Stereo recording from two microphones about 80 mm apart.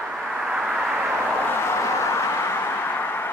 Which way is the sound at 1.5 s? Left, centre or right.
Left.